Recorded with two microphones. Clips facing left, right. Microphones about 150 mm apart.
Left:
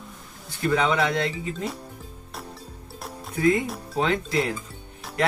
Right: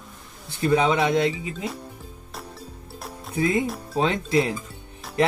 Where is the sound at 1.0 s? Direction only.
20° right (ahead or behind).